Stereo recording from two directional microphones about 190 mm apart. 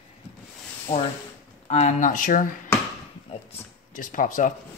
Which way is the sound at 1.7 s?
40° left (ahead or behind).